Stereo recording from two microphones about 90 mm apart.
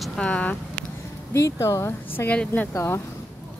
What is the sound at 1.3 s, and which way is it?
Speech, 30° left (ahead or behind).